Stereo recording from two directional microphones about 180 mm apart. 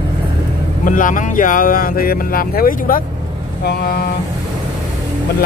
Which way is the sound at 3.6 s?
60° left (ahead or behind).